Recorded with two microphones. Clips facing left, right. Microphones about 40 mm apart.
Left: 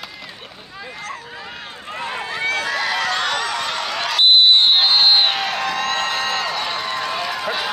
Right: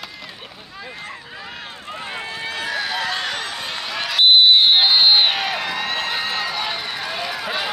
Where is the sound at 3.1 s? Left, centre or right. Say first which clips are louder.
Left 4 dB; left.